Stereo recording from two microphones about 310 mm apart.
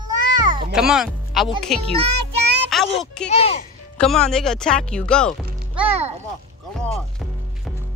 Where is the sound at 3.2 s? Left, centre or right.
Centre.